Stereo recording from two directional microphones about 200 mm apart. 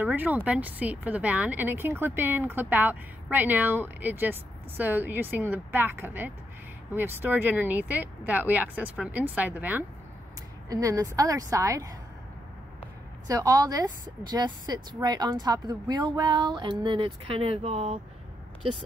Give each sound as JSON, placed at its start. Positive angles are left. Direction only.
{"t": 0.0, "sound": "speech", "side_deg": -10}
{"t": 13.3, "sound": "a woman's voice", "side_deg": -15}